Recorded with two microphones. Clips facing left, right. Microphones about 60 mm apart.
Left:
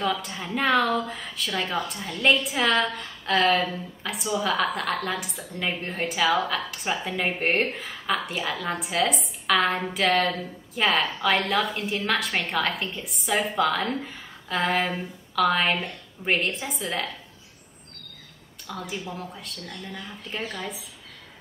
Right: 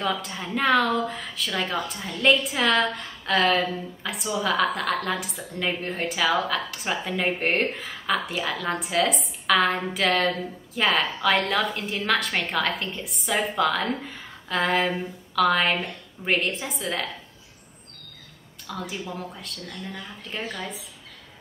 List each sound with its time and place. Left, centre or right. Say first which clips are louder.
0.0 s a woman's voice: even; centre
18.7 s a woman's voice: right 1 dB; centre